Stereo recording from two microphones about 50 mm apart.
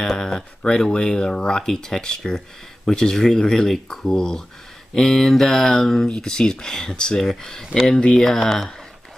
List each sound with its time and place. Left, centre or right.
0.6 s speech: centre